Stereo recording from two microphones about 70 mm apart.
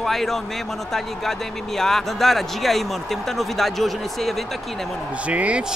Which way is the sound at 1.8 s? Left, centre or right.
Centre.